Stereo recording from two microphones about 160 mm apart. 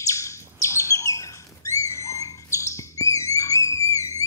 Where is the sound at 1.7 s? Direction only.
20° left (ahead or behind).